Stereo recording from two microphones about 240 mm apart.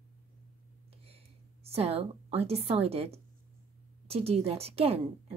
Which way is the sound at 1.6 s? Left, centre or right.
Right.